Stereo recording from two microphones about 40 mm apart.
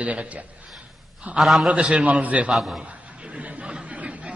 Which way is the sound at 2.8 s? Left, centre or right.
Right.